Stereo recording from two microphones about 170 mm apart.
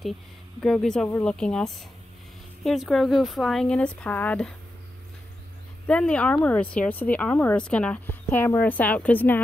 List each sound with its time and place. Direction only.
0.6 s speech: 5° left (ahead or behind)
5.9 s speech: 5° left (ahead or behind)